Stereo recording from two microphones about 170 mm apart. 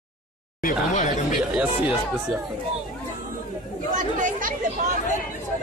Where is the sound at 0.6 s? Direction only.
50° left (ahead or behind).